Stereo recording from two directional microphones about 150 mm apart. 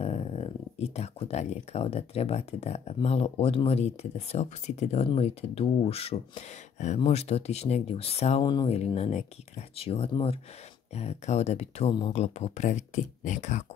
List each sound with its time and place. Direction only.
0.0 s speech: 45° left (ahead or behind)